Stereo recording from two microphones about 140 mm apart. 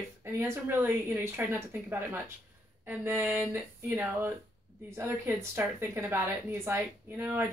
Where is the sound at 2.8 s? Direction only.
15° right (ahead or behind).